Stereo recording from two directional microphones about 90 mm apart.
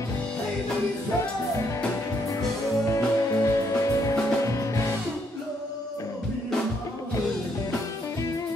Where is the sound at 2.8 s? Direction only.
35° left (ahead or behind).